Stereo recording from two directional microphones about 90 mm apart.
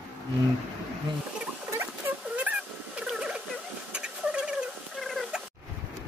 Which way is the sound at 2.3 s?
15° right (ahead or behind).